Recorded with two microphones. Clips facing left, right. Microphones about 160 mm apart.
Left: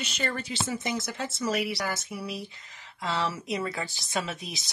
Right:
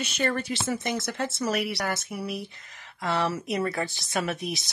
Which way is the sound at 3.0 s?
55° right (ahead or behind).